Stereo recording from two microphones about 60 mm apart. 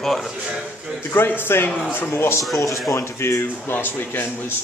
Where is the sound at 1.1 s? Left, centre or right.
Left.